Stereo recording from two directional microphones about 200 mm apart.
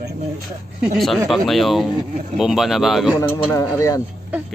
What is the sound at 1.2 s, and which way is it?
Speech, centre (ahead or behind).